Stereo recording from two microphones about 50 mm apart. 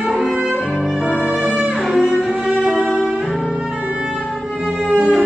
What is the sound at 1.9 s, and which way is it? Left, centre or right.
Music, right.